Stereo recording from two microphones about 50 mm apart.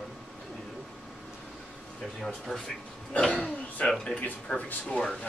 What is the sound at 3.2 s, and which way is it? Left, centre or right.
A man's voice, left.